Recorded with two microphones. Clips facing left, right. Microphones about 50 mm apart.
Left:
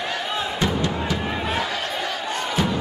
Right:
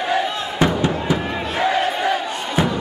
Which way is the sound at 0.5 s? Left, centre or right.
Right.